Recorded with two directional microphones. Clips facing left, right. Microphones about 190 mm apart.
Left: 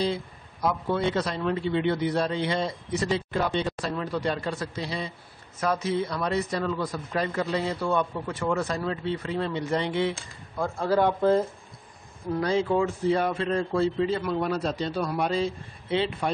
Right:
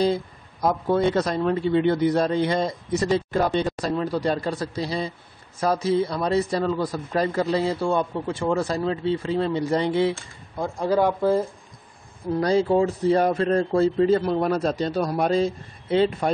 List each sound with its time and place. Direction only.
0.0 s a man's voice: 40° right (ahead or behind)
10.6 s speech: 15° right (ahead or behind)
12.4 s a man's voice: 35° right (ahead or behind)